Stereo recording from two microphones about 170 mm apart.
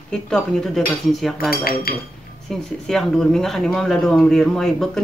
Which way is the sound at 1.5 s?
60° left (ahead or behind).